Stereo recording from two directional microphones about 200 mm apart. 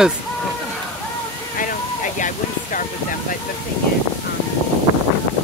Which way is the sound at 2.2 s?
40° left (ahead or behind).